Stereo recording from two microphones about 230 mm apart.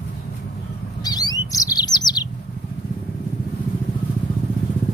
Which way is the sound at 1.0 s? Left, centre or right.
Centre.